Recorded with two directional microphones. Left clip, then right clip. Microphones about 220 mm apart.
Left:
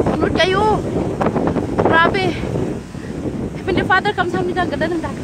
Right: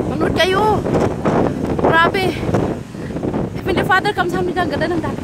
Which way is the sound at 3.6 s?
25° right (ahead or behind).